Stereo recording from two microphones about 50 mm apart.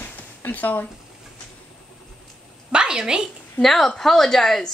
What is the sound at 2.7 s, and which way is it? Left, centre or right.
Speech, centre.